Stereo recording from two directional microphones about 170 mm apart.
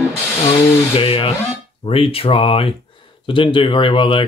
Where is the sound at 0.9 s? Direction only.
35° left (ahead or behind).